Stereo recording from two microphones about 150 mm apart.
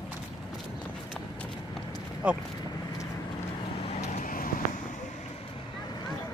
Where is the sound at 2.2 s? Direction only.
5° right (ahead or behind).